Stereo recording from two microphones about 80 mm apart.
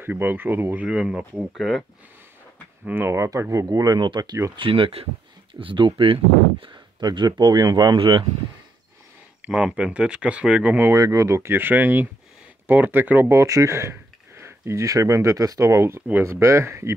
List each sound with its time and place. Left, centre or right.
0.0 s speech: right
0.8 s speech: centre
2.9 s speech: right
3.6 s speech: right
4.6 s speech: right
6.6 s speech: right
9.5 s speech: centre
11.0 s speech: right
13.3 s speech: right